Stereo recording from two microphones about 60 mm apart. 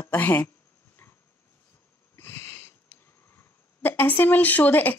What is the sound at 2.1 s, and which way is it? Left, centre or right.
Sniff, left.